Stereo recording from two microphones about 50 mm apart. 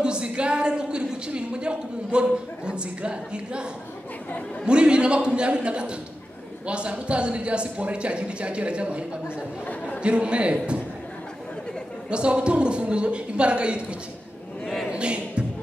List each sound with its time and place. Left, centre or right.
0.0 s speech: centre
4.6 s speech: centre
10.0 s speech: right
12.1 s speech: centre
14.9 s speech: right